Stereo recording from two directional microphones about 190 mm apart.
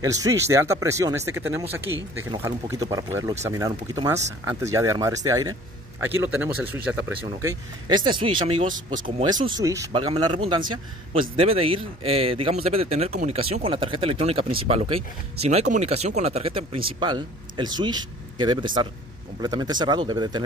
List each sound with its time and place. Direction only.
0.0 s speech: 20° right (ahead or behind)
7.4 s speech: 25° right (ahead or behind)
8.6 s speech: 45° right (ahead or behind)
9.2 s a man's voice: 20° right (ahead or behind)